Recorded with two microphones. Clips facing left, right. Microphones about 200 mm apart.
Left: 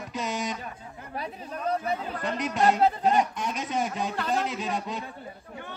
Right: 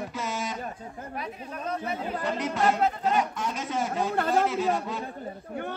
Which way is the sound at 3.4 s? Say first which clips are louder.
Even; 20° left (ahead or behind).